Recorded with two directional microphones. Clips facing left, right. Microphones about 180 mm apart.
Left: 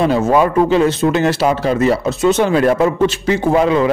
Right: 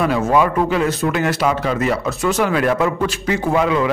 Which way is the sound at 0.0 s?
30° left (ahead or behind).